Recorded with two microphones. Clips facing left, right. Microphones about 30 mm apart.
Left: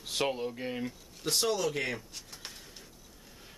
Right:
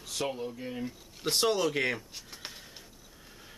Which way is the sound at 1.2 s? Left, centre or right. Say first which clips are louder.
Right 3 dB; centre.